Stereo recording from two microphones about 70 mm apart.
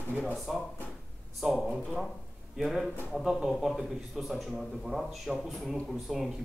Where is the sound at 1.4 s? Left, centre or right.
Centre.